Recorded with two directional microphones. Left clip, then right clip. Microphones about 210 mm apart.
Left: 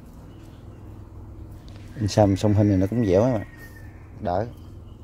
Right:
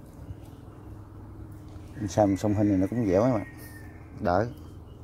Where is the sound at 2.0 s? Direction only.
25° left (ahead or behind).